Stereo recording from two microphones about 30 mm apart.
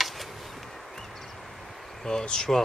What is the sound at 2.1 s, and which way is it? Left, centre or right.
Vehicle, left.